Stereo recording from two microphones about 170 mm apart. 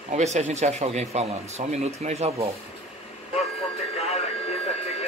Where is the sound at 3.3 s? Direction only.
40° left (ahead or behind).